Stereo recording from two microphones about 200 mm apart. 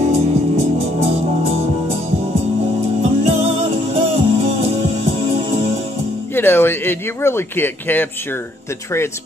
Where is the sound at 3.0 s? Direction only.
30° right (ahead or behind).